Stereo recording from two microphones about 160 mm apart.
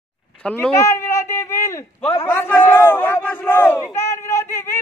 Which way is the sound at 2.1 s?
15° left (ahead or behind).